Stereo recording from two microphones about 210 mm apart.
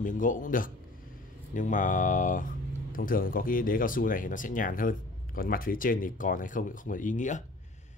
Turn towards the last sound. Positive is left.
turn(degrees=35)  # may be behind; listen again after turning